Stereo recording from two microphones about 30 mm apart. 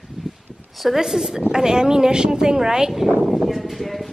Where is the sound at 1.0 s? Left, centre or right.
Centre.